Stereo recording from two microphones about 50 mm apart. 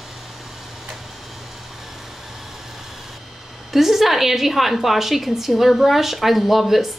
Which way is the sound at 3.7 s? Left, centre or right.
Centre.